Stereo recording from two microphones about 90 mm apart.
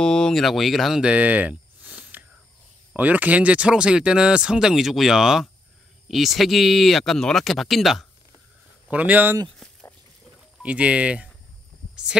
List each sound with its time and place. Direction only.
0.0 s speech: 10° left (ahead or behind); by 1.6 s 15° right (ahead or behind)
1.9 s whispering: 10° right (ahead or behind)
2.9 s speech: 20° right (ahead or behind); by 8.1 s centre (ahead or behind)
8.9 s speech: 15° right (ahead or behind)
9.6 s a sound: 5° left (ahead or behind)
10.6 s speech: 15° right (ahead or behind)